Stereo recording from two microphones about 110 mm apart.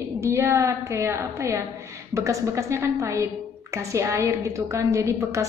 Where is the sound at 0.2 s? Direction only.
25° right (ahead or behind).